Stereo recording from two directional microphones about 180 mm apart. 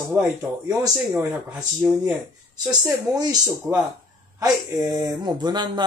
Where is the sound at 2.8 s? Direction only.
20° right (ahead or behind).